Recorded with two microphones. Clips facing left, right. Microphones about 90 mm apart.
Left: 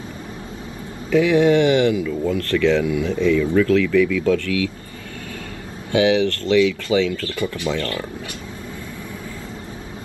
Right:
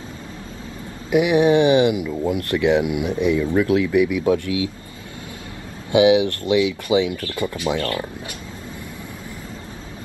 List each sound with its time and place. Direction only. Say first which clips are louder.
1.1 s speech: even; 20° right (ahead or behind)
5.9 s speech: right 2 dB; 20° right (ahead or behind)